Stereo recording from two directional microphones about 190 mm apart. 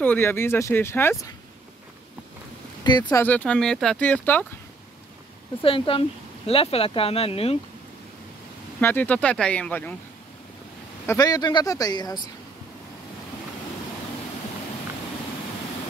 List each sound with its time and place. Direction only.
0.0 s speech: 10° left (ahead or behind)
2.8 s speech: 20° left (ahead or behind)
5.6 s speech: 30° left (ahead or behind)
8.8 s speech: 10° left (ahead or behind)
11.1 s speech: 20° left (ahead or behind)